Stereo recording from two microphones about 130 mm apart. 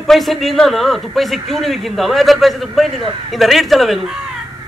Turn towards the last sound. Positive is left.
turn(degrees=0)  # may be behind; listen again after turning